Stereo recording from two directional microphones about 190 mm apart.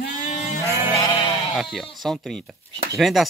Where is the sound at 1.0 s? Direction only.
25° left (ahead or behind).